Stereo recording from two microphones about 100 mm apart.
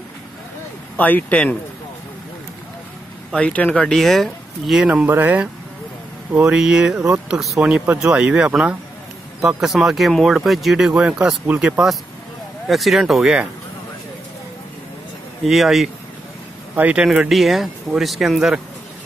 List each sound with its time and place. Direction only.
0.9 s speech: 15° left (ahead or behind)
3.3 s speech: 15° left (ahead or behind); by 5.0 s 10° right (ahead or behind)
5.0 s speech: 20° right (ahead or behind)
12.6 s speech: centre (ahead or behind)
15.4 s speech: centre (ahead or behind)
16.7 s speech: 15° right (ahead or behind)